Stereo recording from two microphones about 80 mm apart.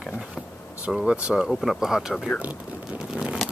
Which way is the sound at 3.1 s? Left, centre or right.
Centre.